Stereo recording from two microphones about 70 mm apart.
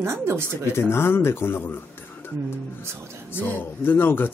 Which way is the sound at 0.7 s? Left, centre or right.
Left.